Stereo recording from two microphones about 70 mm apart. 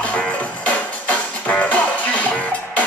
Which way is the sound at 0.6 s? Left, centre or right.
Left.